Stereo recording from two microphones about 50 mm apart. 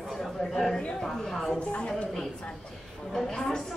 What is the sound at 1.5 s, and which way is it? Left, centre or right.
Speech, left.